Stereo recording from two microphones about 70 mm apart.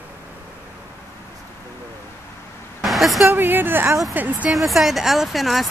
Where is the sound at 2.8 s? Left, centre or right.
Centre.